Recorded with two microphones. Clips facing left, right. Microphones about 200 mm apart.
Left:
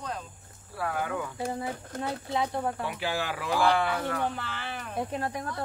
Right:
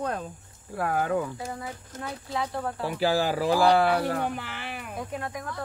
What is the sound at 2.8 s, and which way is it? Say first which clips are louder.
Speech: right 7 dB; 35° right (ahead or behind).